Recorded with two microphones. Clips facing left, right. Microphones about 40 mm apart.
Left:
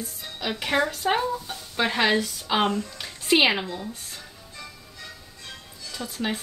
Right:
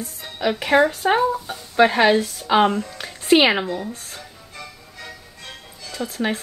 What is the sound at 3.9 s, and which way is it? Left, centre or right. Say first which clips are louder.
Music: right 4 dB; right.